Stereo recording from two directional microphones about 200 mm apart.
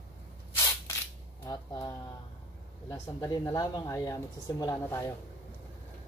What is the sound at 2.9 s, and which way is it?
Speech, 15° left (ahead or behind).